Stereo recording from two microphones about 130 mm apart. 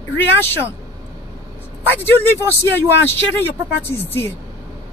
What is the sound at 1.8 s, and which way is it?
Speech, 15° left (ahead or behind).